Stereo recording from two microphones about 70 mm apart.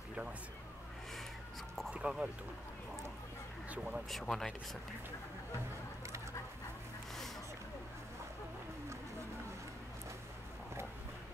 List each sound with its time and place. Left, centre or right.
2.0 s a sound: centre
3.6 s speech: centre
4.1 s speech: centre